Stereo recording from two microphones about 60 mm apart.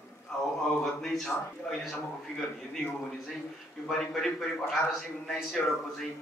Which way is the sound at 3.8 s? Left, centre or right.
Centre.